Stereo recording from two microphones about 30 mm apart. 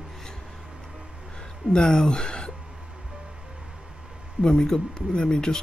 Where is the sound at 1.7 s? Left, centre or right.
Left.